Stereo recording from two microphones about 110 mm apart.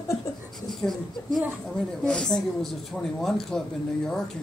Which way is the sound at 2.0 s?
5° left (ahead or behind).